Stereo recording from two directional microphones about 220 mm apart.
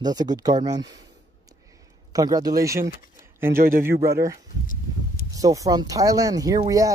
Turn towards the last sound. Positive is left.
turn(degrees=-15)  # may be behind; listen again after turning